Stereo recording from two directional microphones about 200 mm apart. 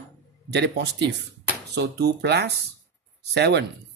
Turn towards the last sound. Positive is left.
turn(degrees=-60)  # may be behind; listen again after turning